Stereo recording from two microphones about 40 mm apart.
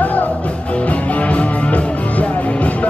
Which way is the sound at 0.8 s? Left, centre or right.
Left.